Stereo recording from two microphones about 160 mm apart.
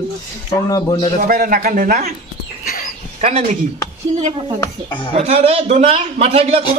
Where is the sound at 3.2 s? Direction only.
40° right (ahead or behind).